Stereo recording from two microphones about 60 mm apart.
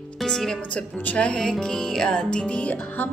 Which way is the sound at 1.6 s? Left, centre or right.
Centre.